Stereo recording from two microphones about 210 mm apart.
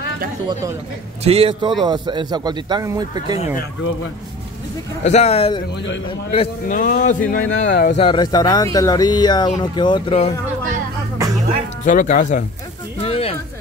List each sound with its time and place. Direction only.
1.2 s speech: 25° right (ahead or behind)
5.0 s a man's voice: 30° left (ahead or behind)
8.0 s speech: 20° left (ahead or behind)
11.8 s a man's voice: 35° left (ahead or behind)
13.0 s a sound: 30° left (ahead or behind)